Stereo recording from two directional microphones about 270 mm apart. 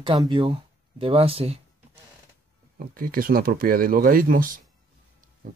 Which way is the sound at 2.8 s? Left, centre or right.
Right.